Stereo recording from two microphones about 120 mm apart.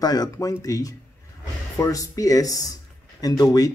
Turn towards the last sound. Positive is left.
turn(degrees=30)  # may be behind; listen again after turning